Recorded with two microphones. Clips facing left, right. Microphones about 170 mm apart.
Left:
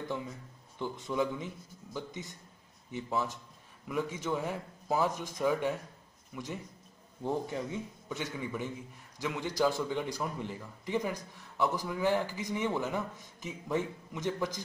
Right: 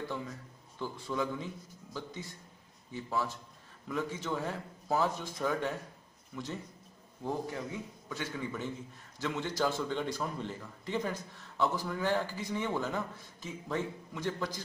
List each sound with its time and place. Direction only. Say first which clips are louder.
0.7 s a man's voice: left 2 dB; 20° left (ahead or behind)